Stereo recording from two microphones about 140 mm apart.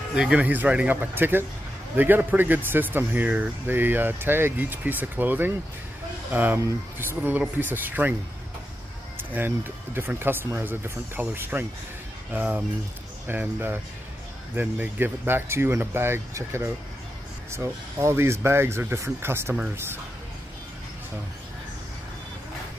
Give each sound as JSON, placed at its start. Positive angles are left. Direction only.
{"t": 0.1, "sound": "speech", "side_deg": -5}
{"t": 9.9, "sound": "speech", "side_deg": -15}